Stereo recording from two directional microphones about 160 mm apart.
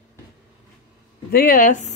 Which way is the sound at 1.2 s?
65° left (ahead or behind).